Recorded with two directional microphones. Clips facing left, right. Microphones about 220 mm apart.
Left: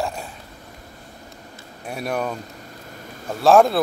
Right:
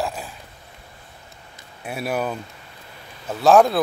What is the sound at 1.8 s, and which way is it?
Speech, 5° right (ahead or behind).